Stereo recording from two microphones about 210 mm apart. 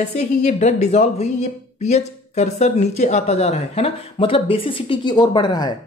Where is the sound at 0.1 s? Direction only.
35° left (ahead or behind).